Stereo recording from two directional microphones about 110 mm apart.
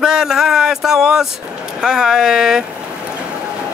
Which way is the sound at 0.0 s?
5° right (ahead or behind).